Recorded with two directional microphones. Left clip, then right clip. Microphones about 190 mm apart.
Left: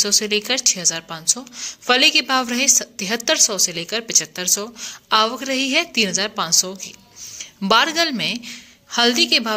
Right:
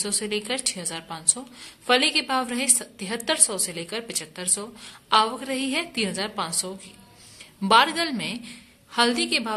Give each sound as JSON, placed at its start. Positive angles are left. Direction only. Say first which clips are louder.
{"t": 0.0, "sound": "a woman's voice", "louder": "left 10 dB", "side_deg": 25}